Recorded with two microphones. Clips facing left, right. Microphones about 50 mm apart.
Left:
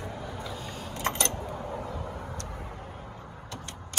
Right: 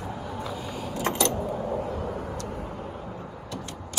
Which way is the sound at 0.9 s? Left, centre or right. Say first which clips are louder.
Right 4 dB; left.